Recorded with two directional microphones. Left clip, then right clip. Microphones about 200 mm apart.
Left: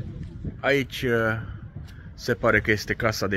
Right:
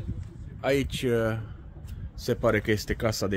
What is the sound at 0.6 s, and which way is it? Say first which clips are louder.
Speech: left 3 dB; 5° right (ahead or behind).